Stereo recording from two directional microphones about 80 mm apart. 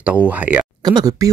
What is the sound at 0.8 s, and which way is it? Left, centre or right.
Speech, right.